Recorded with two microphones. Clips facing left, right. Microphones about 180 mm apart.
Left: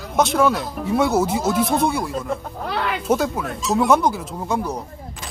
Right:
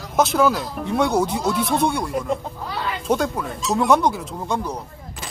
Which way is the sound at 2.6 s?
70° left (ahead or behind).